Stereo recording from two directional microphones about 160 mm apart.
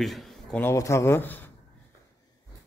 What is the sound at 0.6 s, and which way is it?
Speech, 20° left (ahead or behind).